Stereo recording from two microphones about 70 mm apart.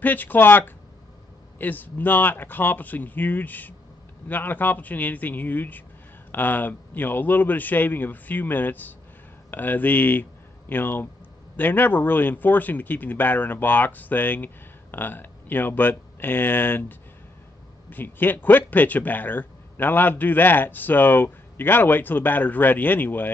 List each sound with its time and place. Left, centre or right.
0.0 s speech: left
17.8 s speech: left